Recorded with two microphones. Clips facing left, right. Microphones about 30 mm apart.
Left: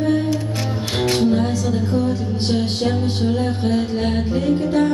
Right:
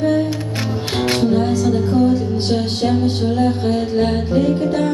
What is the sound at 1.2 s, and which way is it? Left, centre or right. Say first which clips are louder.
Music: right 2 dB; centre.